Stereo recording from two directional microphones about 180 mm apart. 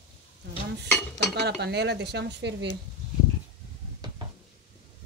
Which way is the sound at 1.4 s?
70° right (ahead or behind).